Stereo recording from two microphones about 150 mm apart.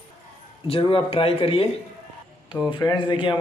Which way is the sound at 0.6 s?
35° left (ahead or behind).